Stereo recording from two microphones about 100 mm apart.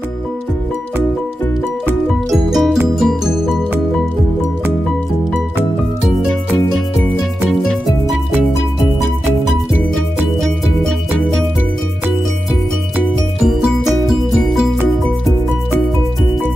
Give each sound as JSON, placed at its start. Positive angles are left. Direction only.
{"t": 2.3, "sound": "music", "side_deg": 0}
{"t": 7.4, "sound": "music", "side_deg": 5}
{"t": 13.4, "sound": "music", "side_deg": -5}